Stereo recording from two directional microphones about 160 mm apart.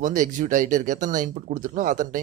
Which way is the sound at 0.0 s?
55° right (ahead or behind).